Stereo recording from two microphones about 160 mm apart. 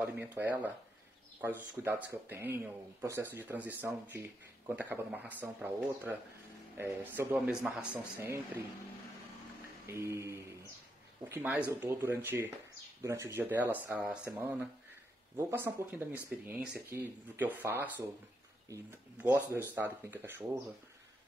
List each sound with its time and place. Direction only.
0.0 s speech: 10° right (ahead or behind)
9.8 s speech: 15° right (ahead or behind)
19.1 s speech: 10° right (ahead or behind)